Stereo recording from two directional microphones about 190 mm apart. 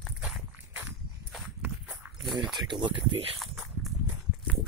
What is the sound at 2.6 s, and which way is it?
Speech, 25° right (ahead or behind).